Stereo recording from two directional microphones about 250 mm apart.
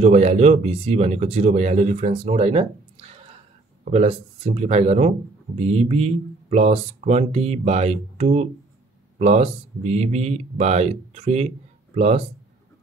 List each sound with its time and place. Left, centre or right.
0.0 s speech: right